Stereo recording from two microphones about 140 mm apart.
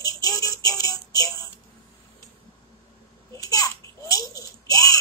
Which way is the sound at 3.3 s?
25° left (ahead or behind).